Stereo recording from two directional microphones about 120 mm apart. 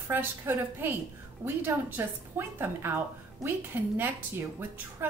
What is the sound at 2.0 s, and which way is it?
A woman's voice, 20° right (ahead or behind).